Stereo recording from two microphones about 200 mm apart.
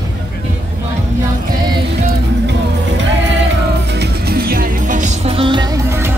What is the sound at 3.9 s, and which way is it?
Music, 55° right (ahead or behind).